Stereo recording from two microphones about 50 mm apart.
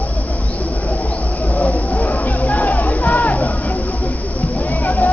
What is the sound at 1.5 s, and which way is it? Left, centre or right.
Music, left.